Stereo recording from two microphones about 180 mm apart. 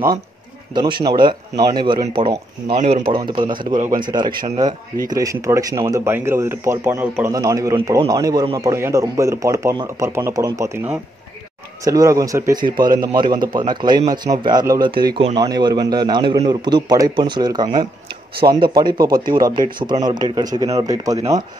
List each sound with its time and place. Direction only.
0.7 s speech: 25° right (ahead or behind)
3.7 s a man's voice: 45° right (ahead or behind)
4.0 s speech: 25° right (ahead or behind)